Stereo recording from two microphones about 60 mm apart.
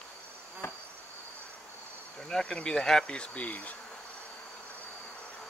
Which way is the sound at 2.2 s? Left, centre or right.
Centre.